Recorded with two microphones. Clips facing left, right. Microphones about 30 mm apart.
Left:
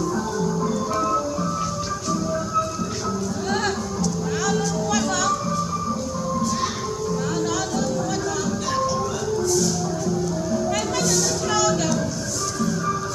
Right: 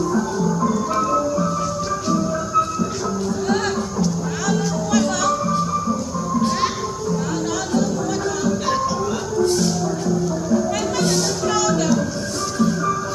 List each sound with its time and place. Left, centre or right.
0.5 s music: centre
3.4 s music: centre
4.9 s music: centre
8.5 s music: centre
9.4 s music: right
10.5 s music: centre
11.4 s music: centre
12.5 s music: centre